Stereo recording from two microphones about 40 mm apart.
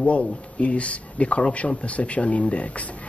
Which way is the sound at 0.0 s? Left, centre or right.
Left.